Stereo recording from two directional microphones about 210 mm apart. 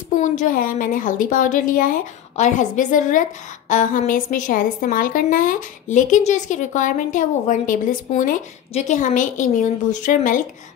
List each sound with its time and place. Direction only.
0.1 s a woman's voice: 35° left (ahead or behind)